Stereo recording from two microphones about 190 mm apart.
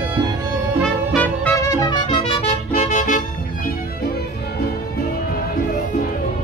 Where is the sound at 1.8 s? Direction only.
20° left (ahead or behind); by 3.2 s 40° left (ahead or behind).